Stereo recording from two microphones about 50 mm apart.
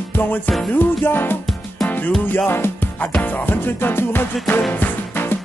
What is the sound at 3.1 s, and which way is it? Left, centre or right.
Music, left.